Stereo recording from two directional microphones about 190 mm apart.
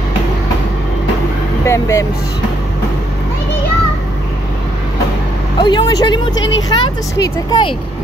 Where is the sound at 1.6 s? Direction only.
15° left (ahead or behind).